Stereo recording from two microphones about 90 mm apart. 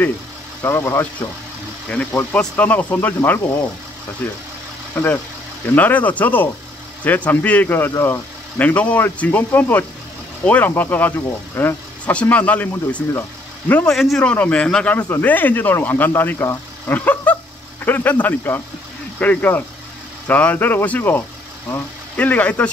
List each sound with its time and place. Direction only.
0.6 s speech: 25° left (ahead or behind)
1.9 s speech: 15° left (ahead or behind)
4.2 s speech: 15° left (ahead or behind)
13.9 s speech: centre (ahead or behind)
14.2 s speech: 15° left (ahead or behind)